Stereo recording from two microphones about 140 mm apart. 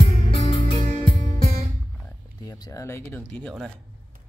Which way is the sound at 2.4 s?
25° left (ahead or behind).